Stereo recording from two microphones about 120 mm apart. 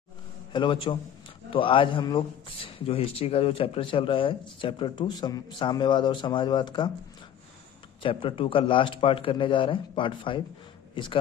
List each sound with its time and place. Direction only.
0.5 s a man's voice: 45° left (ahead or behind)
8.0 s a man's voice: 45° left (ahead or behind)